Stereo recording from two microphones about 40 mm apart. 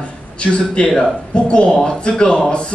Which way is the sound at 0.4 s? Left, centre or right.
Left.